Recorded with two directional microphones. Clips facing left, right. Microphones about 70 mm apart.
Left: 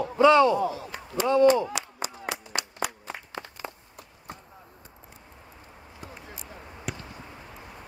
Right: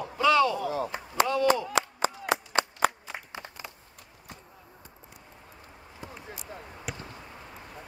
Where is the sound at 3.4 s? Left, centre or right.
Left.